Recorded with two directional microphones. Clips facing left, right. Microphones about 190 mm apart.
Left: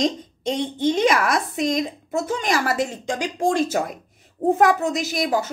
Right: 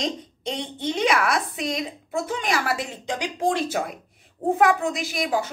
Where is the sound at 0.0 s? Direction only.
45° left (ahead or behind).